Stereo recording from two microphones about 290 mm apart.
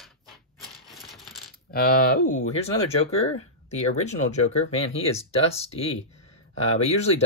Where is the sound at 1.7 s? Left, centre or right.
Left.